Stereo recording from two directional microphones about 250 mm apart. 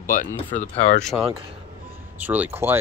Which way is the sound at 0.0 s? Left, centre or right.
Left.